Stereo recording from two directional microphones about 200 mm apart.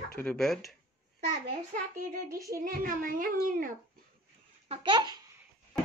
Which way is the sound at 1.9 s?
45° right (ahead or behind).